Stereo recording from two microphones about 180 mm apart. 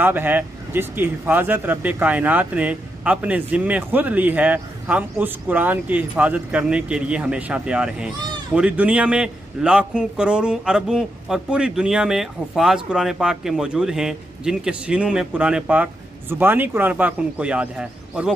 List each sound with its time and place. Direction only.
0.0 s a man's voice: 10° right (ahead or behind)